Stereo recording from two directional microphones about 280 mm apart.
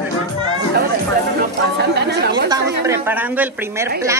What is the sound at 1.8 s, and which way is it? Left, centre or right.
Speech, right.